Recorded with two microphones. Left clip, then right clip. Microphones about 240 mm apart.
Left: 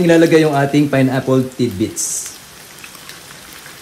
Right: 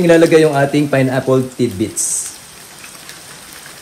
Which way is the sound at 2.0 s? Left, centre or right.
Left.